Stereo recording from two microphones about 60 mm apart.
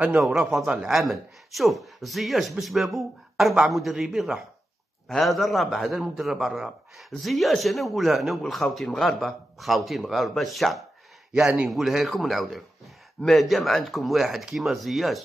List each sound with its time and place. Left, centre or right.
0.2 s a man's voice: centre
5.9 s a man's voice: centre